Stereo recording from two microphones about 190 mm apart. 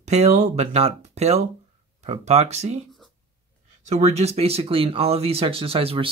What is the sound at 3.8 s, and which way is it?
Speech, 35° right (ahead or behind).